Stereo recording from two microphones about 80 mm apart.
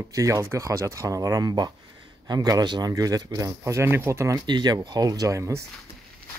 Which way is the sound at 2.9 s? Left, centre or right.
Right.